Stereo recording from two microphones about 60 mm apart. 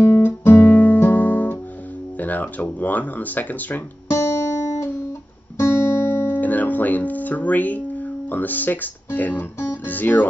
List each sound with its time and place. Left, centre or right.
0.0 s guitar: left
2.1 s speech: left
4.1 s music: left
5.6 s music: left
6.4 s speech: left